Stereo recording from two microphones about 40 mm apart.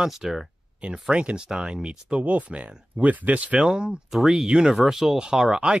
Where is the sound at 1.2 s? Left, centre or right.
Right.